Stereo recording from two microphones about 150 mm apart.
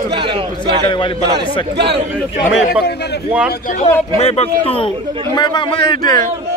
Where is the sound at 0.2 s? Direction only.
35° right (ahead or behind).